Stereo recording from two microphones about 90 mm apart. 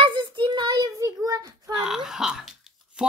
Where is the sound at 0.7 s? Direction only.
40° right (ahead or behind).